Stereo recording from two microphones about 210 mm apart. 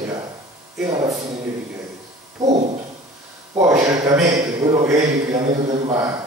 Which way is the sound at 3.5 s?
15° right (ahead or behind).